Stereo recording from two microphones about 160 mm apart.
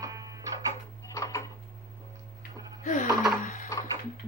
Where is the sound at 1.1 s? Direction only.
20° left (ahead or behind).